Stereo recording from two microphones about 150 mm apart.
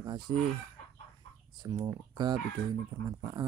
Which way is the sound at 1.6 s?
30° right (ahead or behind).